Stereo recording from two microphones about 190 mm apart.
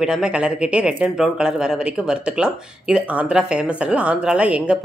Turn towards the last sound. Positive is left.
turn(degrees=-5)  # may be behind; listen again after turning